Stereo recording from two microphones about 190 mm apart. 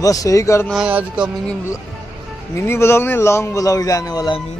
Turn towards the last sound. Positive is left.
turn(degrees=20)  # may be behind; listen again after turning